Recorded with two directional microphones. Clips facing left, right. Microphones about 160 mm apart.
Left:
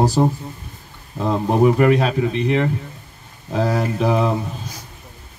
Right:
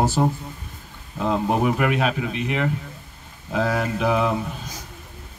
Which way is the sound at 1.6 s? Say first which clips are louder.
Left 6 dB; 35° left (ahead or behind).